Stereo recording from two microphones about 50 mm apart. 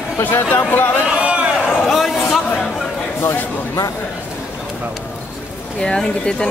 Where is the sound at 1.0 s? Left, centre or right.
Right.